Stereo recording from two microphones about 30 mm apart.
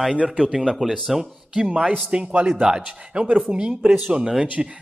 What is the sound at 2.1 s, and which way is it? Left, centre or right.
Speech, right.